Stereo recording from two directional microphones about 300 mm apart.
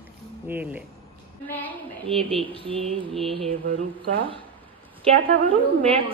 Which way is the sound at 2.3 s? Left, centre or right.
Centre.